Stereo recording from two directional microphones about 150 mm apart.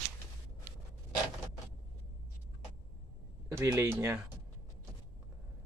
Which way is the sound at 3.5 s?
20° right (ahead or behind).